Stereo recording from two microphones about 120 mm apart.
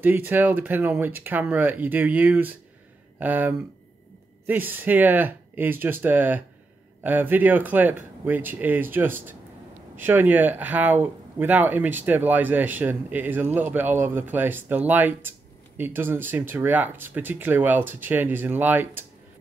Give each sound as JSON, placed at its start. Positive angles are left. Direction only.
{"t": 0.0, "sound": "speech", "side_deg": -15}